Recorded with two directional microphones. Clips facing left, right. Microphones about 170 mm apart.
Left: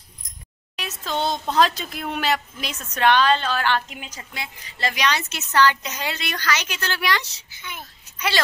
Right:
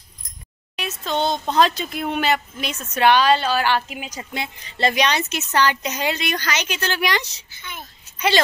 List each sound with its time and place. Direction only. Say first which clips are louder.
0.7 s a woman's voice: right 3 dB; centre (ahead or behind)
4.2 s a woman's voice: right 7 dB; 25° right (ahead or behind)
7.5 s a child's voice: even; 10° left (ahead or behind)